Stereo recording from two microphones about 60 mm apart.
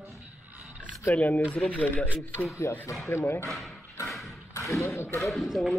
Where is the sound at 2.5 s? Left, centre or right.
Left.